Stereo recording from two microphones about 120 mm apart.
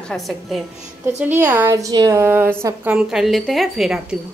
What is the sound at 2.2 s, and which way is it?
Speech, 15° right (ahead or behind).